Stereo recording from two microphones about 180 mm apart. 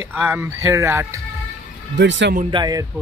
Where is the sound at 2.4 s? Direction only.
25° right (ahead or behind).